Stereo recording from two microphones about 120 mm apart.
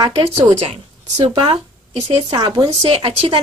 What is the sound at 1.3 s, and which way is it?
A woman's voice, 50° right (ahead or behind).